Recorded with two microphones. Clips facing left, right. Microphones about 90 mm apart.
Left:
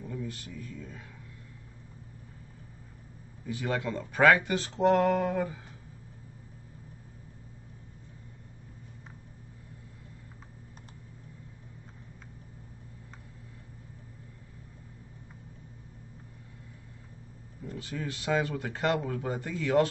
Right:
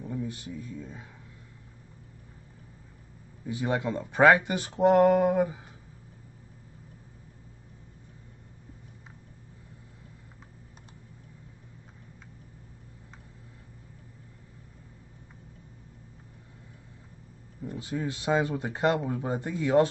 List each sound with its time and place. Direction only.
0.0 s speech: 20° right (ahead or behind)
3.4 s speech: 20° right (ahead or behind)
17.6 s speech: 20° right (ahead or behind)